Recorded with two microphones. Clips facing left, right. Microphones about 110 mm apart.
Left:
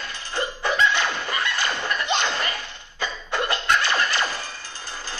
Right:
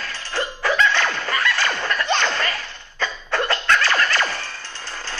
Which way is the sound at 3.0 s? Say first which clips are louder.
Right 3 dB; 20° left (ahead or behind).